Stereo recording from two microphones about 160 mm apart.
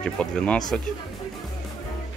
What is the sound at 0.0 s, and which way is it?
Speech, 5° left (ahead or behind).